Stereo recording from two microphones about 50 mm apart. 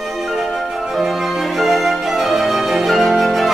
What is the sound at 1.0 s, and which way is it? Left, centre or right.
Music, centre.